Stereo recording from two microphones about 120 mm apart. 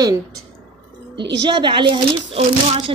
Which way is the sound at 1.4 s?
40° right (ahead or behind).